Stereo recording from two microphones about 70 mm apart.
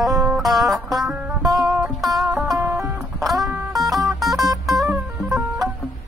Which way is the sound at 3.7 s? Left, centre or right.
Centre.